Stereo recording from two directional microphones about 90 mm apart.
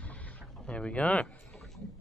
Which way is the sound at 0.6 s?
10° left (ahead or behind).